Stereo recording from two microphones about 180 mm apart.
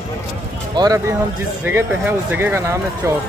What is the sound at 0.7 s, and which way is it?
Speech, 20° right (ahead or behind).